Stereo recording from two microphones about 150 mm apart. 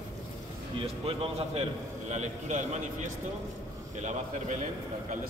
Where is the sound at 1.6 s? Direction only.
50° right (ahead or behind).